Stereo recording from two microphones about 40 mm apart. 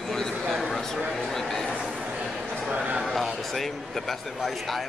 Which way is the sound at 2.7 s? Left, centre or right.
Right.